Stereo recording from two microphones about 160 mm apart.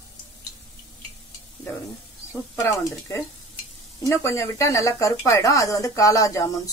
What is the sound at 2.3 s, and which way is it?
Speech, 20° left (ahead or behind).